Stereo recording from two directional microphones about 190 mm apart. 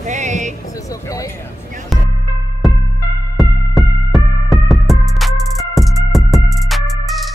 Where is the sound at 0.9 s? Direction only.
15° left (ahead or behind).